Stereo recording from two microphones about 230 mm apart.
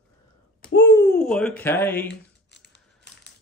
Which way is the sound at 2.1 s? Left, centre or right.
Left.